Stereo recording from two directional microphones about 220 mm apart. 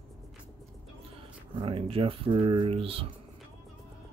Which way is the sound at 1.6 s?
25° right (ahead or behind).